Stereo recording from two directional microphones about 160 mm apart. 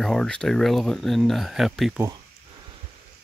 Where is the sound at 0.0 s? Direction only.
5° left (ahead or behind).